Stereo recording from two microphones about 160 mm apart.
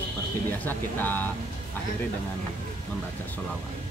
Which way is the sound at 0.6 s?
10° left (ahead or behind).